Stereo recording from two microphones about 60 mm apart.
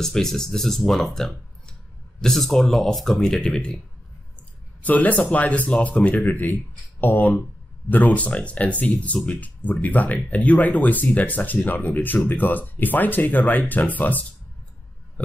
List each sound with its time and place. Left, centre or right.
0.0 s speech: centre
4.4 s speech: left